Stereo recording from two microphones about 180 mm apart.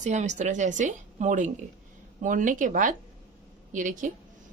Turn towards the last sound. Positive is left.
turn(degrees=-45)  # may be behind; listen again after turning